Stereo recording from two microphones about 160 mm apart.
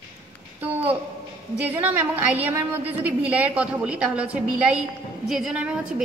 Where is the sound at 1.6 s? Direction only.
10° right (ahead or behind).